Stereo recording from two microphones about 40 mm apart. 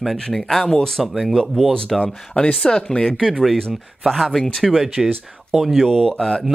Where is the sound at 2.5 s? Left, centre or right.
Centre.